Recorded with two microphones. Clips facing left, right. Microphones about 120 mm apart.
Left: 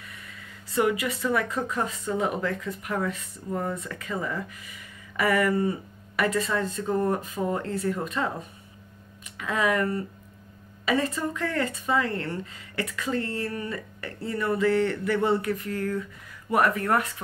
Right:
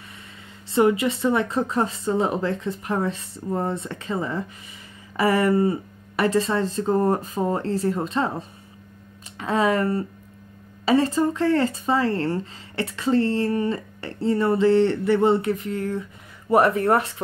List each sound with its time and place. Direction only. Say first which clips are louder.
0.7 s speech: right 6 dB; 25° right (ahead or behind)